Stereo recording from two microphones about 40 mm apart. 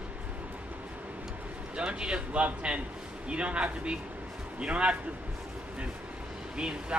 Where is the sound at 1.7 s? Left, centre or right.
Right.